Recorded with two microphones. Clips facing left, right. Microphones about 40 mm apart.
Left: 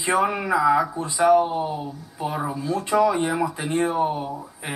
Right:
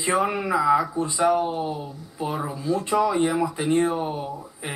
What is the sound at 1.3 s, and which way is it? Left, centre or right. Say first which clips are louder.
Speech: left 4 dB; centre.